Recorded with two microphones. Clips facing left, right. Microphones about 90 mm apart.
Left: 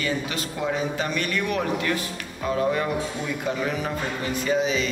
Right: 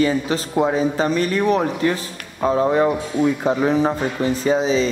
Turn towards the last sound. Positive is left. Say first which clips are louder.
# right 6 dB
turn(degrees=-35)  # may be behind; listen again after turning